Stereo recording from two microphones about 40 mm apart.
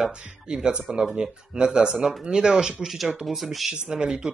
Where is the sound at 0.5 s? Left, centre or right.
Centre.